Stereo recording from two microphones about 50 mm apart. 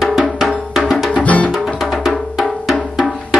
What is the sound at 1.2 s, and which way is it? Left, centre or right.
Music, left.